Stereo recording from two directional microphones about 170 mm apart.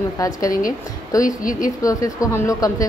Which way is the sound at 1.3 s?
55° left (ahead or behind).